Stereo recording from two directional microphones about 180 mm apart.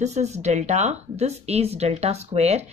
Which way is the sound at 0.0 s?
40° right (ahead or behind).